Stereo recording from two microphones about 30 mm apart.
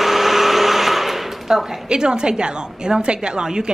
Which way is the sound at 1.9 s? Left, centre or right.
Right.